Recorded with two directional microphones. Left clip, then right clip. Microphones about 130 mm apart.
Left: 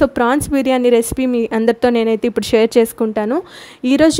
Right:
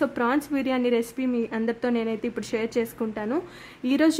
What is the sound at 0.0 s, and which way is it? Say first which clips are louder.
Speech: left 10 dB; 50° left (ahead or behind).